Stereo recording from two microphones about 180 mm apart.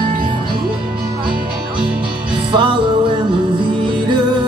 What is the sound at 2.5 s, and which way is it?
Music, 25° right (ahead or behind).